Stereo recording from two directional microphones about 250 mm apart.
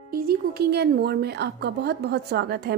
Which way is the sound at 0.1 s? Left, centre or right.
Right.